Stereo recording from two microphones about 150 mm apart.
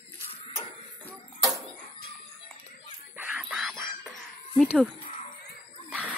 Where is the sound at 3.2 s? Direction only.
10° right (ahead or behind).